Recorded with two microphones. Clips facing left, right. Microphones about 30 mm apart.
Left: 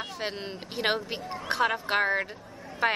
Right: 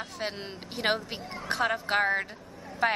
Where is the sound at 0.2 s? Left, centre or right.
Centre.